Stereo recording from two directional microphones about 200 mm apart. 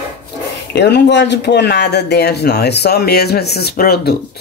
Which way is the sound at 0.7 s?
55° left (ahead or behind).